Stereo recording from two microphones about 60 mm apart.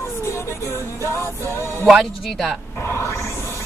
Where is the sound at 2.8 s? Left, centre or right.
Left.